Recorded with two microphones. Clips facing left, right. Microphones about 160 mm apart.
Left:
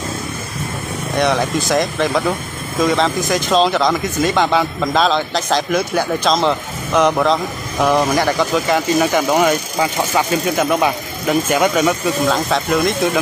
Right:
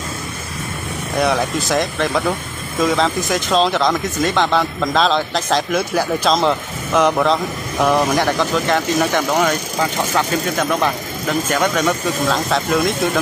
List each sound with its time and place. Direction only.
1.1 s speech: centre (ahead or behind)